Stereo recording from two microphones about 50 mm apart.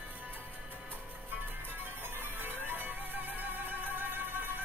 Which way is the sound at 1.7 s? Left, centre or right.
Right.